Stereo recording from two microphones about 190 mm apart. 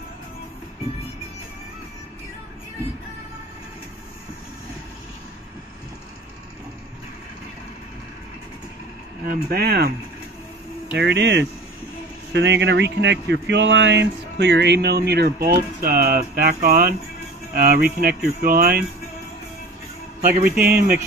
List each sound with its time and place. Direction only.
9.3 s speech: 55° right (ahead or behind)
10.9 s speech: 65° right (ahead or behind); by 18.9 s 50° right (ahead or behind)
20.2 s speech: 50° right (ahead or behind)